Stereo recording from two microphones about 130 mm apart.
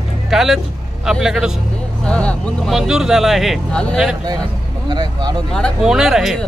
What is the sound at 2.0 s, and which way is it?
Speech, 10° left (ahead or behind).